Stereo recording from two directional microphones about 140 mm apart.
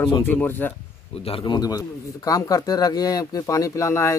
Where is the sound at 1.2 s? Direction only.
35° left (ahead or behind).